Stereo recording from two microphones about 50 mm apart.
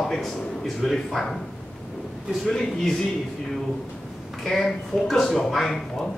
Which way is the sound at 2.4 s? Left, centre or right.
Centre.